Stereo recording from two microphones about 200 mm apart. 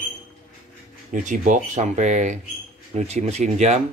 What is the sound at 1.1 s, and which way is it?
Speech, 40° right (ahead or behind).